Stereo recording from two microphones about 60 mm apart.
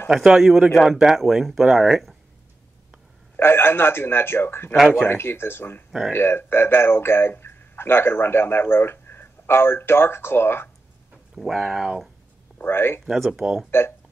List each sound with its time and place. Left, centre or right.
0.1 s speech: centre
3.3 s a man's voice: left
4.7 s speech: centre
5.0 s a man's voice: left
5.9 s speech: centre
6.1 s a man's voice: left
11.3 s speech: centre
12.6 s a man's voice: left
13.0 s speech: centre
13.7 s a man's voice: left